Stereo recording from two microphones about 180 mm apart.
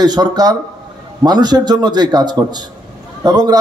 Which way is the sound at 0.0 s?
20° right (ahead or behind).